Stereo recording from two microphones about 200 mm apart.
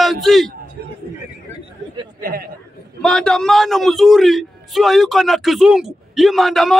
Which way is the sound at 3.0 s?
5° left (ahead or behind).